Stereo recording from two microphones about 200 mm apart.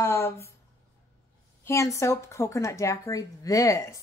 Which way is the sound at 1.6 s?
15° left (ahead or behind).